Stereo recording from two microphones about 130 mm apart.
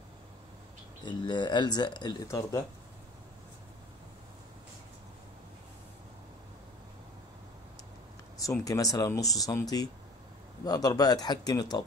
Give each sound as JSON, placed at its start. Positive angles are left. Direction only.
{"t": 1.0, "sound": "speech", "side_deg": 35}
{"t": 8.4, "sound": "speech", "side_deg": 25}